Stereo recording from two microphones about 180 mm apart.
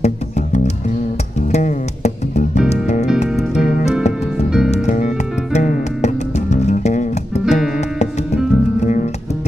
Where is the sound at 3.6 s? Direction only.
45° left (ahead or behind).